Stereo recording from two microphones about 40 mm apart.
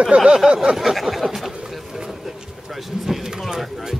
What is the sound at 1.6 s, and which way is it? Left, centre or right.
Vehicle, centre.